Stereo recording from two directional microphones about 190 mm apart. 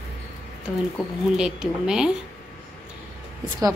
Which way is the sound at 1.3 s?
5° right (ahead or behind).